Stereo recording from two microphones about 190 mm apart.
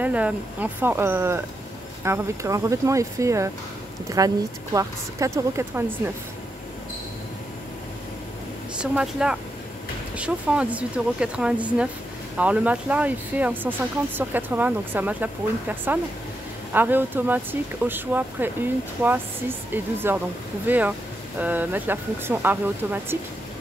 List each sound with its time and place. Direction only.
0.0 s speech: 10° right (ahead or behind)
8.7 s speech: 5° right (ahead or behind)
19.7 s speech: 10° right (ahead or behind)